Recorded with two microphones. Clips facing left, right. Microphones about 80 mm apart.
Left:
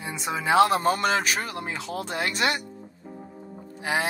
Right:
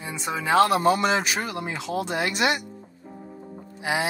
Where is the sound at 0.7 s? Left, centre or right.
Left.